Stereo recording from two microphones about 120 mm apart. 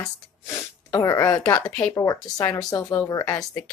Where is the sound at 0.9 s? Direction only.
30° left (ahead or behind).